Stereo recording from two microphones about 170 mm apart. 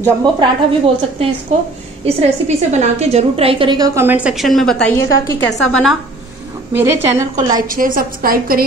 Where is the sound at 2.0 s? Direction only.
40° right (ahead or behind); by 5.9 s centre (ahead or behind).